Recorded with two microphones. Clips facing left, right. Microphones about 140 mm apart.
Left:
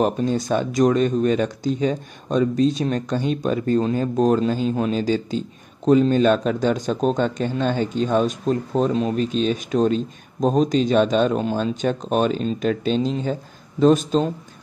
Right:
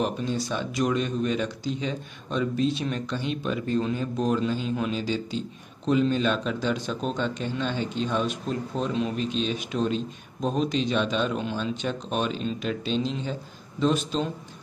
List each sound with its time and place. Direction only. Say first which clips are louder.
0.0 s a man's voice: left 7 dB; 45° left (ahead or behind)